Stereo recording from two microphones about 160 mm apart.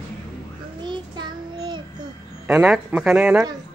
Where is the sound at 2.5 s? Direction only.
5° right (ahead or behind).